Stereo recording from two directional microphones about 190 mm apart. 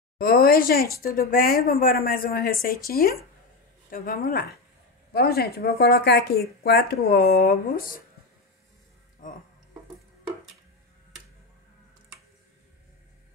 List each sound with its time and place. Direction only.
0.2 s speech: 50° left (ahead or behind)